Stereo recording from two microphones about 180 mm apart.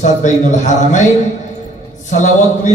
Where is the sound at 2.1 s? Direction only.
45° left (ahead or behind).